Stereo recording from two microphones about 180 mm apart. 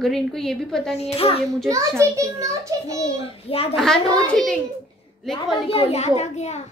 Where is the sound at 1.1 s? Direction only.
30° left (ahead or behind).